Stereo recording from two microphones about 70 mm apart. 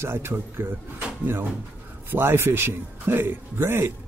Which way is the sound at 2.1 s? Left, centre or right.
Right.